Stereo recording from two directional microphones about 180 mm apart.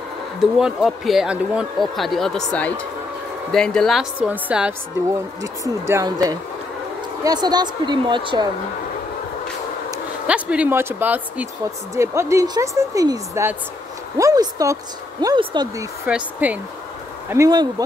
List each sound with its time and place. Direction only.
0.4 s speech: 5° right (ahead or behind)
5.9 s speech: 20° right (ahead or behind)
10.2 s speech: 5° right (ahead or behind); by 15.7 s 25° right (ahead or behind)
16.1 s speech: 10° right (ahead or behind)
17.3 s speech: 20° right (ahead or behind)